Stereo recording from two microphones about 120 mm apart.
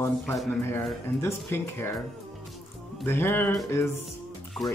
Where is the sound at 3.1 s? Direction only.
20° left (ahead or behind).